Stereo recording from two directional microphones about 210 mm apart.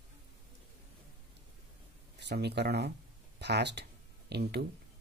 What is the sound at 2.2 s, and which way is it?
Speech, 55° right (ahead or behind).